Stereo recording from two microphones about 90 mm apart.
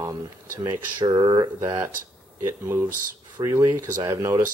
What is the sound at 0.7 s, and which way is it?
Speech, 55° right (ahead or behind).